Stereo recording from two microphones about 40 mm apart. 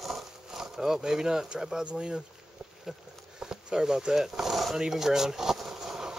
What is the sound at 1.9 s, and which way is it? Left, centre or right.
Speech, right.